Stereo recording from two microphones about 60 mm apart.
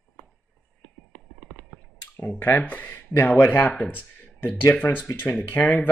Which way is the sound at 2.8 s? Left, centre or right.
Left.